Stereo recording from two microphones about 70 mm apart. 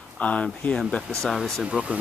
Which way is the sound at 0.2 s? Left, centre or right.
Centre.